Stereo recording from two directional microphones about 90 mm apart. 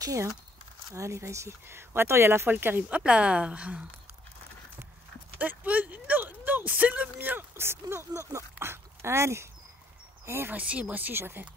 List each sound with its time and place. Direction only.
0.0 s speech: 40° right (ahead or behind); by 3.8 s 15° right (ahead or behind)
5.4 s speech: 20° right (ahead or behind)
10.6 s speech: 15° right (ahead or behind)